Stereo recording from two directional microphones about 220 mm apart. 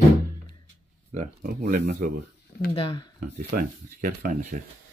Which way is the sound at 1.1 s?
35° right (ahead or behind).